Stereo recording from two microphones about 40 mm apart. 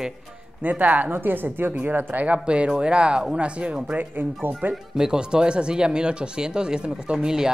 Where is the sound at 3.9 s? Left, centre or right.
Right.